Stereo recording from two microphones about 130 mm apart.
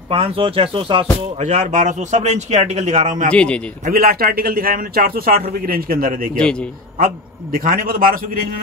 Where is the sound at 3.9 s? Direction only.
90° right.